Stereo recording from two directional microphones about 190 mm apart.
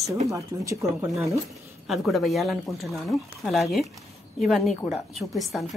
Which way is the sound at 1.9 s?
Centre (ahead or behind).